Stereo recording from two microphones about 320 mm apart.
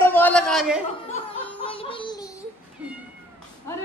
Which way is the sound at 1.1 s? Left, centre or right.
Centre.